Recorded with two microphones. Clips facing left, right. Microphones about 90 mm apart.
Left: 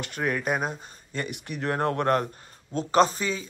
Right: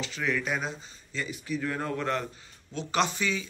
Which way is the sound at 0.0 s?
50° left (ahead or behind).